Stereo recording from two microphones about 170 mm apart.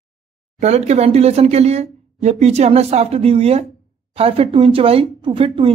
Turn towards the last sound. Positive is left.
turn(degrees=-30)  # may be behind; listen again after turning